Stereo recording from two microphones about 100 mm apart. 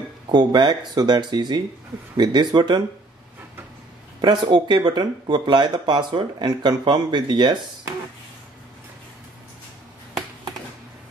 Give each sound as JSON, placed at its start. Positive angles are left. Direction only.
{"t": 0.3, "sound": "speech", "side_deg": -45}
{"t": 4.2, "sound": "speech", "side_deg": -45}